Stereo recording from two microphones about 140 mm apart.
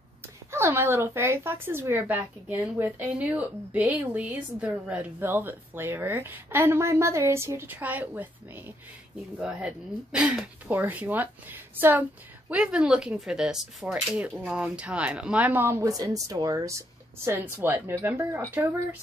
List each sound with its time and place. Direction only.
0.5 s speech: 20° right (ahead or behind)